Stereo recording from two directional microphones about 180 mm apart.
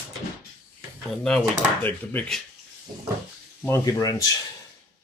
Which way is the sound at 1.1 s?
5° left (ahead or behind).